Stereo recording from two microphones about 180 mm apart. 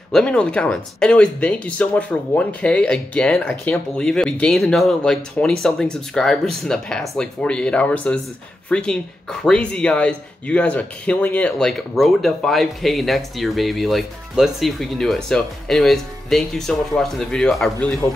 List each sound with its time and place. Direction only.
0.1 s speech: 5° left (ahead or behind)